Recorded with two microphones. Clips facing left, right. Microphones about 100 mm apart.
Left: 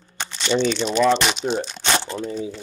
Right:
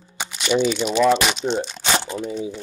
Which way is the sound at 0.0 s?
10° right (ahead or behind).